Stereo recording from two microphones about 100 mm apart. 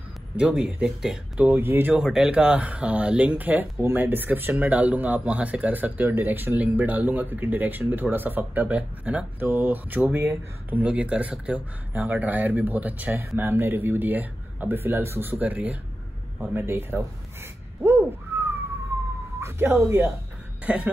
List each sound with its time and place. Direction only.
0.4 s speech: 10° right (ahead or behind)
1.6 s speech: 20° right (ahead or behind)
2.0 s speech: 5° right (ahead or behind); by 17.0 s 25° right (ahead or behind)
18.3 s a sound: 25° right (ahead or behind)
19.4 s speech: 25° right (ahead or behind)
20.6 s speech: 10° right (ahead or behind)